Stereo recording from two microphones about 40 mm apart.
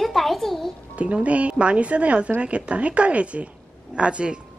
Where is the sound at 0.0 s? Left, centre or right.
Centre.